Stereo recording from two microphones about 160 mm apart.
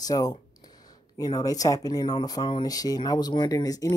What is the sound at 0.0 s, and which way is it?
Speech, 25° left (ahead or behind).